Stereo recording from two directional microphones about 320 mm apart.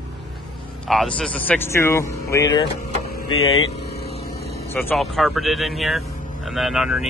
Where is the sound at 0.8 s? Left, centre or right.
Centre.